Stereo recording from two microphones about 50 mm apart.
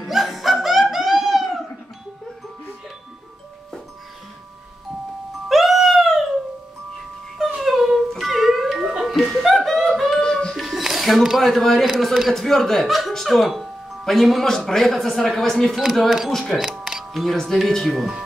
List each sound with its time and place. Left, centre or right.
0.1 s laughter: centre
5.5 s music: centre
7.3 s music: centre
9.4 s yodeling: centre
10.2 s music: centre
10.5 s music: centre
11.9 s speech: centre
16.5 s music: centre
17.1 s speech: centre